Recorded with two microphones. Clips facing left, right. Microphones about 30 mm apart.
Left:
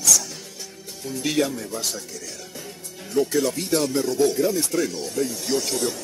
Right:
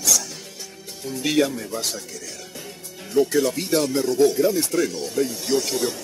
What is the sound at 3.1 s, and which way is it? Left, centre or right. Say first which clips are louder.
Speech: right 2 dB; centre.